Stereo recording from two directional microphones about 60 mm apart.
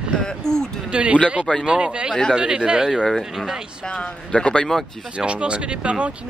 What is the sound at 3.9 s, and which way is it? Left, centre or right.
Speech, centre.